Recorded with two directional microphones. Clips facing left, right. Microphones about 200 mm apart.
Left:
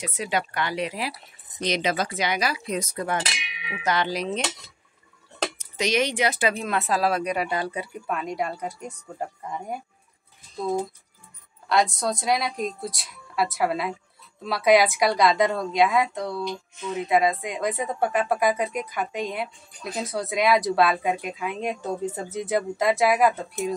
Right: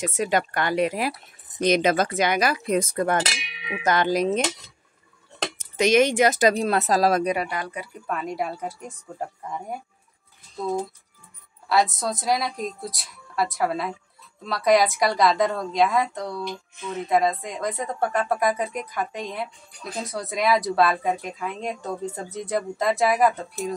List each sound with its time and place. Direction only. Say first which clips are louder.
0.0 s cutlery: right 4 dB; 45° right (ahead or behind)
5.8 s cutlery: right 6 dB; 50° right (ahead or behind)
7.4 s speech: left 3 dB; 30° left (ahead or behind)
8.1 s speech: right 1 dB; centre (ahead or behind)
11.7 s speech: even; centre (ahead or behind)